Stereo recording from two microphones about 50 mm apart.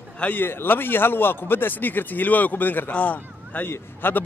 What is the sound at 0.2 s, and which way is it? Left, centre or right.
A man's voice, left.